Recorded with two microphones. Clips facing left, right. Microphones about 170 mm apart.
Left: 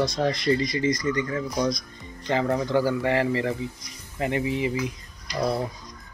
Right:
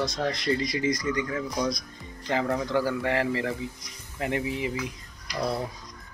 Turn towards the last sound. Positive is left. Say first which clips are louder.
# left 3 dB
turn(degrees=5)  # may be behind; listen again after turning